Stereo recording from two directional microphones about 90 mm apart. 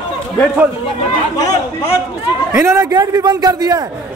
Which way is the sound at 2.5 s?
35° right (ahead or behind).